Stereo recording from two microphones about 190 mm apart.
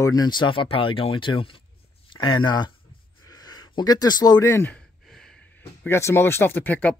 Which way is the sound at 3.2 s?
20° left (ahead or behind).